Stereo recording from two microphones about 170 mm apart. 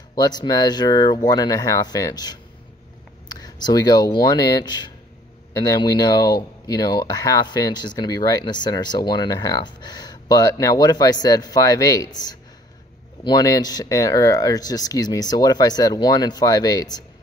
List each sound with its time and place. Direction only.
0.1 s speech: 25° left (ahead or behind)